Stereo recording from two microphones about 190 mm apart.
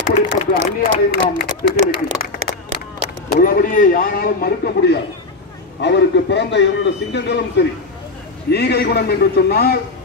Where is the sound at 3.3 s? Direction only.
50° left (ahead or behind).